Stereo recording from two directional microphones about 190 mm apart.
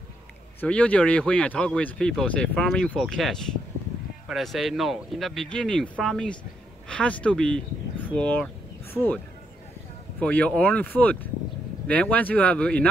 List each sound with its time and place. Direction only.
0.6 s speech: 5° left (ahead or behind)
10.2 s speech: 5° left (ahead or behind)